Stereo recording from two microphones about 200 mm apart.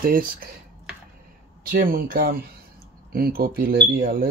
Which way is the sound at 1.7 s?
45° right (ahead or behind).